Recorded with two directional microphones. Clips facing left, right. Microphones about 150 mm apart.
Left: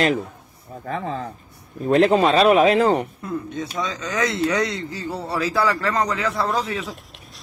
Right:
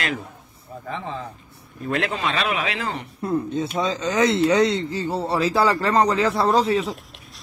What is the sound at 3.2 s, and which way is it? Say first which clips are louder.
Speech: right 4 dB; 35° right (ahead or behind).